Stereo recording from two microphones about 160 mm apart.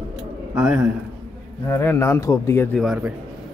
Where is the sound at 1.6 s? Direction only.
15° left (ahead or behind).